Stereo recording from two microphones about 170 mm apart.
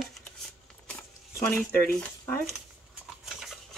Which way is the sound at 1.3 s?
15° left (ahead or behind).